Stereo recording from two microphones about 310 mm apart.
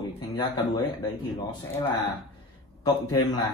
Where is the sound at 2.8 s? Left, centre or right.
Centre.